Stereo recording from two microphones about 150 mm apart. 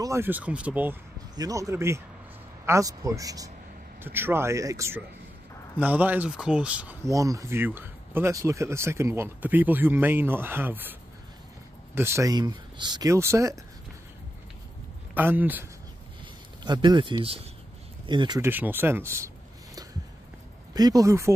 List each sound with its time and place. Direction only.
0.0 s speech: 15° right (ahead or behind)
1.3 s speech: 25° right (ahead or behind)
7.1 s speech: 20° right (ahead or behind)
15.1 s speech: 10° right (ahead or behind)
16.6 s speech: 30° right (ahead or behind)
18.4 s speech: 15° right (ahead or behind)